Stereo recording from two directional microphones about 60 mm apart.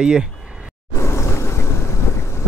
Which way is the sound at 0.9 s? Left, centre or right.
Left.